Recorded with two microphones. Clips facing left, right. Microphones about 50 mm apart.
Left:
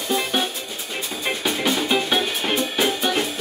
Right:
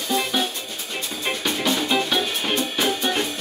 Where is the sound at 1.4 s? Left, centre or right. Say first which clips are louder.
Left 1 dB; centre.